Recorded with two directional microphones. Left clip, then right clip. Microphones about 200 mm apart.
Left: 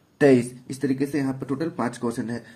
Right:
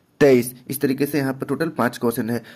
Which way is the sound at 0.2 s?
35° right (ahead or behind).